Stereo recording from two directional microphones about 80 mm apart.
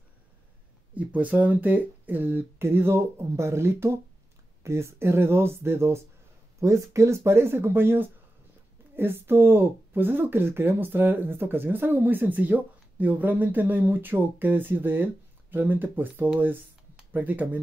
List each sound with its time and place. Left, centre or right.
0.9 s speech: centre